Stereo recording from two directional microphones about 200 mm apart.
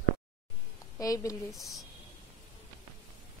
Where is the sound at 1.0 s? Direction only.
15° left (ahead or behind).